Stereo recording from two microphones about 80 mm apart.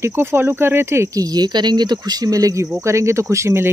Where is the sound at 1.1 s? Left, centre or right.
Right.